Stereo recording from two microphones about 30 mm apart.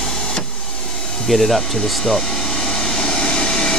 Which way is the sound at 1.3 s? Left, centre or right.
Centre.